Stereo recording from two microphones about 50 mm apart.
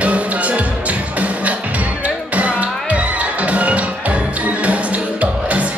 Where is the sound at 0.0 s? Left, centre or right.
Right.